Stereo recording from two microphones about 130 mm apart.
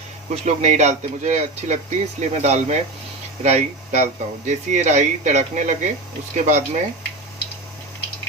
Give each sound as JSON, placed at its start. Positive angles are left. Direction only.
{"t": 0.5, "sound": "speech", "side_deg": -65}